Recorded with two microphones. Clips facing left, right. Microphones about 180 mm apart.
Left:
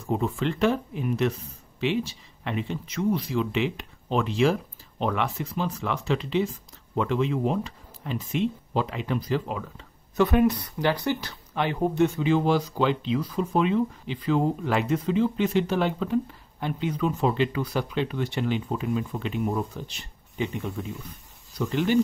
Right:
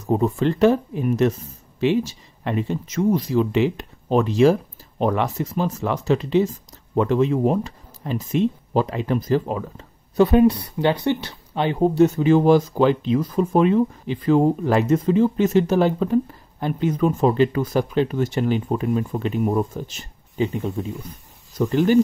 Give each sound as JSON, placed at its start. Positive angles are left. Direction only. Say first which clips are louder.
{"t": 0.0, "sound": "speech", "louder": "right 6 dB", "side_deg": -40}